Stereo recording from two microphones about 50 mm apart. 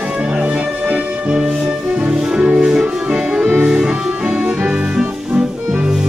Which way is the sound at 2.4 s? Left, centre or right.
Right.